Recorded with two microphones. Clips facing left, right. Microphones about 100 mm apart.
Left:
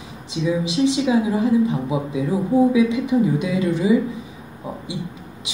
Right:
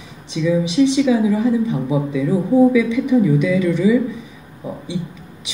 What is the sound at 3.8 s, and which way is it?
Speech, 25° left (ahead or behind).